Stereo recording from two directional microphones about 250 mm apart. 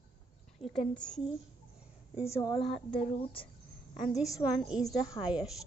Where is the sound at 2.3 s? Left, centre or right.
Centre.